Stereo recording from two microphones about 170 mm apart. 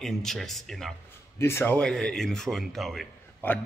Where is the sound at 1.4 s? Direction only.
15° left (ahead or behind).